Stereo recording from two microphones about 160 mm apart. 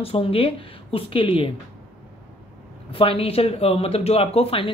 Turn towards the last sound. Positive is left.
turn(degrees=35)  # may be behind; listen again after turning